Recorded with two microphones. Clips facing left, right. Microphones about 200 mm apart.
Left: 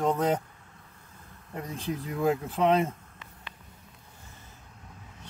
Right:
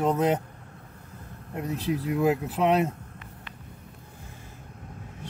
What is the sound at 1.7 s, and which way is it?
Speech, 75° right (ahead or behind).